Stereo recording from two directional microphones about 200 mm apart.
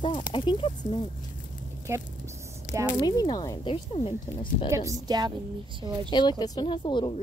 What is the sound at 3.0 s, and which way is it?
A woman's voice, 20° left (ahead or behind).